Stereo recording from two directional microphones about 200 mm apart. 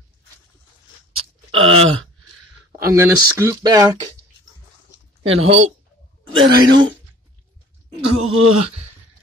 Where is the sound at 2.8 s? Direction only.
15° right (ahead or behind).